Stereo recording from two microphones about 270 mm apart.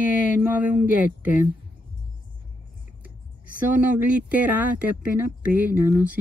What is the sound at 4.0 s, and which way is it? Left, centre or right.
Speech, centre.